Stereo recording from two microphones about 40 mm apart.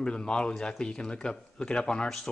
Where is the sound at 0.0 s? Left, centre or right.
Left.